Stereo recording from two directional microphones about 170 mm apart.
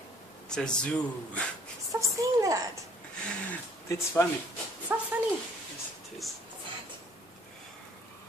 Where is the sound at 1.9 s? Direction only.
20° right (ahead or behind).